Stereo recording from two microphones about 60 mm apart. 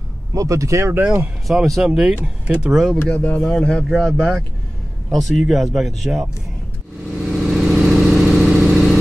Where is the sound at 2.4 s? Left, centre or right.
Right.